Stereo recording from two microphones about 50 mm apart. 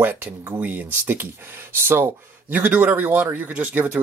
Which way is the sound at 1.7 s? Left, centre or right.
Right.